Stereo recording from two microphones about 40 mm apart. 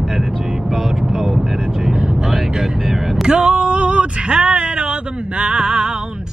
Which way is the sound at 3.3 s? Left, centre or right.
Centre.